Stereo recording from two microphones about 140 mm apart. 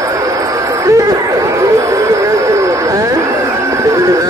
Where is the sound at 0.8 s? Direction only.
25° right (ahead or behind).